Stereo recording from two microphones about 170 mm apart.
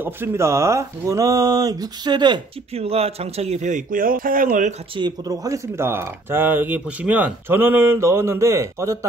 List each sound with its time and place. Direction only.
0.0 s speech: 15° right (ahead or behind); by 4.7 s 50° right (ahead or behind)
4.9 s speech: 25° right (ahead or behind)